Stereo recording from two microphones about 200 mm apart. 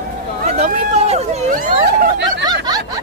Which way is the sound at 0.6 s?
30° right (ahead or behind).